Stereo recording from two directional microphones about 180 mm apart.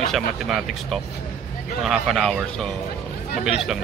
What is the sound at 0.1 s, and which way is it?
Speech, centre (ahead or behind).